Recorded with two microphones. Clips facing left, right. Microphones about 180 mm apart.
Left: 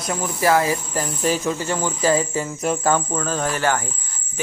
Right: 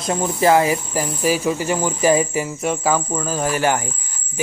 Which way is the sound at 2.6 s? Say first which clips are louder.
Left 1 dB; centre (ahead or behind).